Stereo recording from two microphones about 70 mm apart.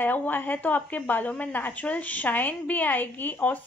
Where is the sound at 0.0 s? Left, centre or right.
Left.